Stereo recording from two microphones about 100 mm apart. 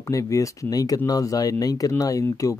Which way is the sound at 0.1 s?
35° left (ahead or behind).